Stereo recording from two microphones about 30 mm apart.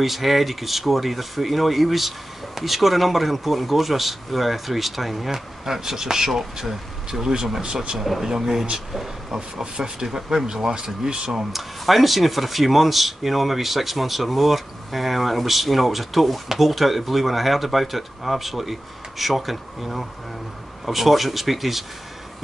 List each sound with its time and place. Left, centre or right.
0.0 s speech: centre
5.3 s speech: centre
9.3 s speech: right
11.5 s speech: centre